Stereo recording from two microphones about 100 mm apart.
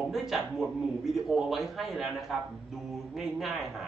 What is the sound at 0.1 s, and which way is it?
A man's voice, centre (ahead or behind).